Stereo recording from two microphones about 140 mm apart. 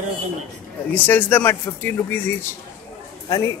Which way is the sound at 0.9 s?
15° left (ahead or behind).